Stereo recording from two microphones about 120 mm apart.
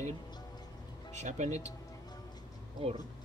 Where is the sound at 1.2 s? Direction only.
75° right (ahead or behind).